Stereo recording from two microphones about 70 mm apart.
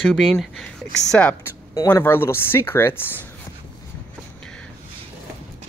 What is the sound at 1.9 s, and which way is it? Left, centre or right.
Speech, left.